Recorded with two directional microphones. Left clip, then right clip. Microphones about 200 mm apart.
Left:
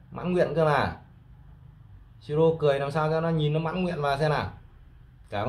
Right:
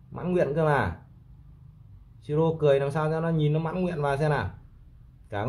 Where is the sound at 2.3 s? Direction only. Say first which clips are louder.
Even; 30° right (ahead or behind).